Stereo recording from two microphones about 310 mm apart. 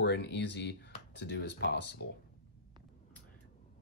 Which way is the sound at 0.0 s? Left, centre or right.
Left.